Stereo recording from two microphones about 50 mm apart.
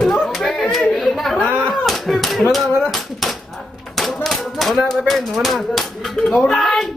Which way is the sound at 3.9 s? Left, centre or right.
Centre.